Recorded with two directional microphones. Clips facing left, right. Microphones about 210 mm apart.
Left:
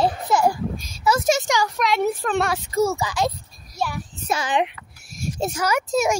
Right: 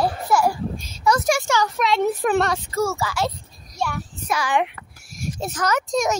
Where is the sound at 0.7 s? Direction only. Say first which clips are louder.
Right 1 dB; 10° left (ahead or behind).